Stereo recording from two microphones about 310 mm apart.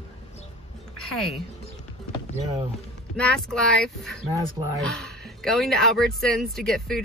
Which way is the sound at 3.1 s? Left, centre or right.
Centre.